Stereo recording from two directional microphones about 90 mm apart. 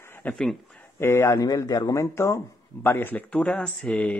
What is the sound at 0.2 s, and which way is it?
Speech, 15° left (ahead or behind).